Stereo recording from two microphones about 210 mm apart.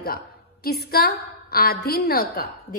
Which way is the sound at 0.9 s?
45° left (ahead or behind).